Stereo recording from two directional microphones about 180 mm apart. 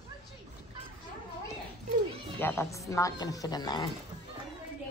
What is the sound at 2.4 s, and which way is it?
Speech, 15° left (ahead or behind).